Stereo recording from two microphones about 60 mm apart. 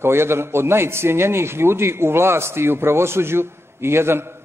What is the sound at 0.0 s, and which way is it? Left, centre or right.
A man's voice, right.